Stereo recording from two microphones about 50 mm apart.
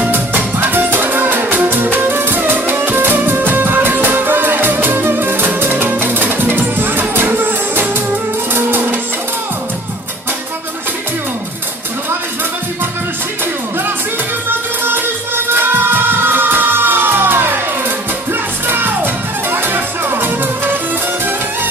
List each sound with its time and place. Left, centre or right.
0.1 s music: right
14.9 s music: right
19.5 s music: right